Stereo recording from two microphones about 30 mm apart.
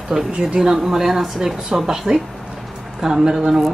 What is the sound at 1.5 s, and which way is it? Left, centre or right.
Speech, centre.